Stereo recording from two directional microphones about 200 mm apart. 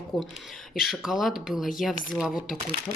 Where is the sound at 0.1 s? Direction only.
Centre (ahead or behind).